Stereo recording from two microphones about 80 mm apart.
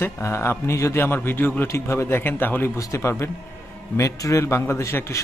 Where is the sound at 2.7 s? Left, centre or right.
Left.